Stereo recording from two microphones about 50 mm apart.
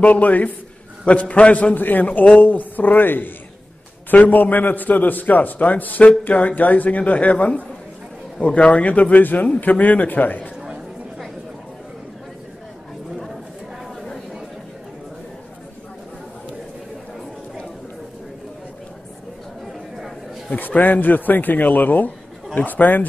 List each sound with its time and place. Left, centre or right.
0.0 s a man's voice: left
13.1 s chatter: centre
20.5 s a man's voice: left